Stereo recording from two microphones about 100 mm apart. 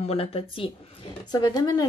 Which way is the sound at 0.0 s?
85° left.